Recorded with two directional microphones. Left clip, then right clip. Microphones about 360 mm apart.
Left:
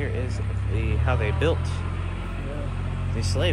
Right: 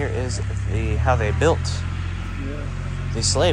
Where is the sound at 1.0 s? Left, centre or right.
Centre.